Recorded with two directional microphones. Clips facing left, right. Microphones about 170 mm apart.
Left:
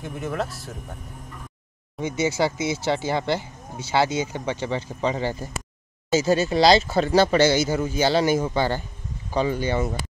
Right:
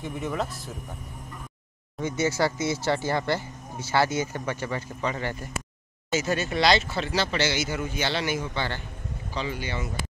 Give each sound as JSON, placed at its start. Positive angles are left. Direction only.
{"t": 0.0, "sound": "speech", "side_deg": 0}
{"t": 2.0, "sound": "speech", "side_deg": 15}